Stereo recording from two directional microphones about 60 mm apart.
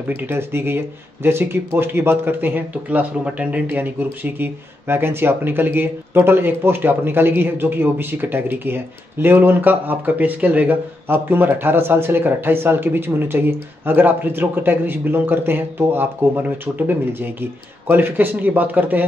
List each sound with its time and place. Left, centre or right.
0.1 s speech: right